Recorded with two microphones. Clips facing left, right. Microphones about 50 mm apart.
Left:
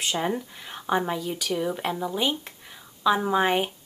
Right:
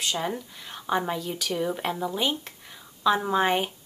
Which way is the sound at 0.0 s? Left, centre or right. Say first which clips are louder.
Left 2 dB; left.